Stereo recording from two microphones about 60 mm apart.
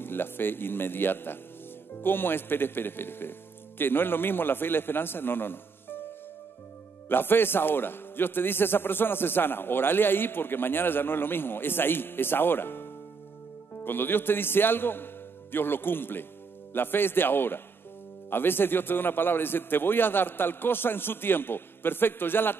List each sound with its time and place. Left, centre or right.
0.0 s a man's voice: left
7.1 s a man's voice: left